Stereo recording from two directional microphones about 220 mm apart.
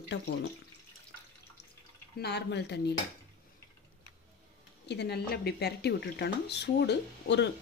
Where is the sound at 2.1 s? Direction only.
50° left (ahead or behind).